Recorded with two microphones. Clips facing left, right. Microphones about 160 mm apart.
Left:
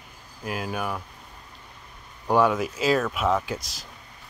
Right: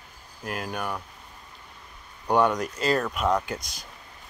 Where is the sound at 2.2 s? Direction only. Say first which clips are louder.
Left 1 dB; centre (ahead or behind).